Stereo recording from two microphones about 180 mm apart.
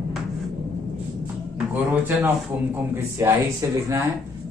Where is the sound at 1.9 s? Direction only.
10° right (ahead or behind).